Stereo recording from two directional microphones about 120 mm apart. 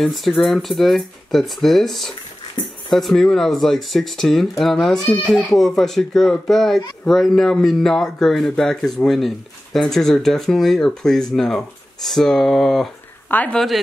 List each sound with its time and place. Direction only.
0.0 s speech: centre (ahead or behind)
13.3 s speech: 15° left (ahead or behind)